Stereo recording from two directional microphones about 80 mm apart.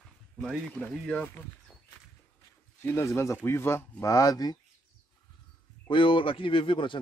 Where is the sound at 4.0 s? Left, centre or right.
Left.